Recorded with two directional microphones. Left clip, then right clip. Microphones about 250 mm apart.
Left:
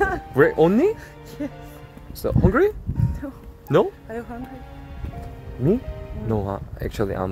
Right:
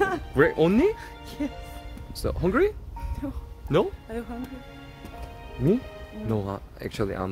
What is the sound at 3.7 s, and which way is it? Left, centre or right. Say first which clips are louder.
Speech: left 5 dB; left.